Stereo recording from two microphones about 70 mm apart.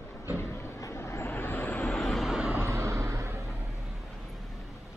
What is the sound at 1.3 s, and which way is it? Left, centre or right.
Vehicle, left.